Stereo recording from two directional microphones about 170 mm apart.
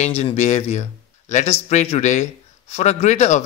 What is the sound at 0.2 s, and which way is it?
Speech, 40° left (ahead or behind).